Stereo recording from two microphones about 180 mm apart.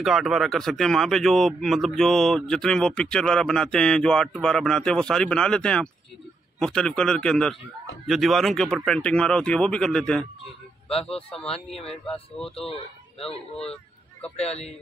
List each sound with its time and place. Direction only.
0.0 s speech: centre (ahead or behind)
11.3 s speech: 35° left (ahead or behind)
11.9 s speech: 5° left (ahead or behind)
12.5 s speech: 30° left (ahead or behind)
14.3 s speech: 35° left (ahead or behind)